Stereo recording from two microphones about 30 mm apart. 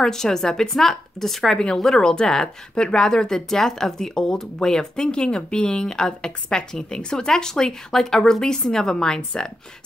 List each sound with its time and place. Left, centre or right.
0.0 s speech: centre
1.8 s speech: centre
2.7 s speech: left
3.0 s speech: centre